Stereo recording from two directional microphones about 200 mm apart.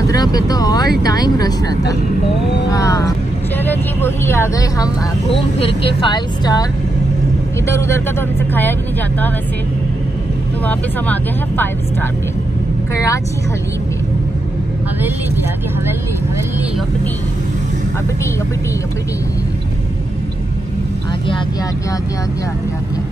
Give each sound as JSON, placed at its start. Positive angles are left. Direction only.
{"t": 0.0, "sound": "vehicle", "side_deg": 20}
{"t": 3.6, "sound": "speech", "side_deg": 10}
{"t": 7.6, "sound": "speech", "side_deg": 15}
{"t": 10.6, "sound": "speech", "side_deg": 10}